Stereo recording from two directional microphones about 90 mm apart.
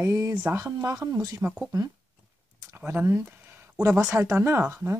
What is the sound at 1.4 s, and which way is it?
Speech, 25° right (ahead or behind).